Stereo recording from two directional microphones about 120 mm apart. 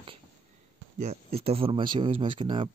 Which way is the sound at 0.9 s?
65° right (ahead or behind).